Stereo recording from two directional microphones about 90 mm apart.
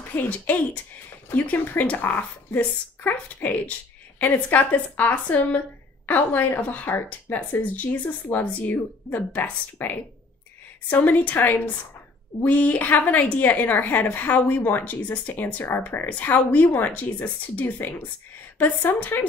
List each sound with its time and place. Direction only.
0.1 s a woman's voice: 20° left (ahead or behind)